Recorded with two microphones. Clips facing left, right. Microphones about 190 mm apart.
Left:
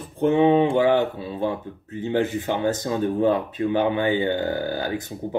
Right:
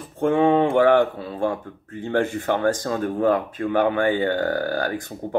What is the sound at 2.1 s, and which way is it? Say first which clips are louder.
Speech: right 1 dB; 20° left (ahead or behind).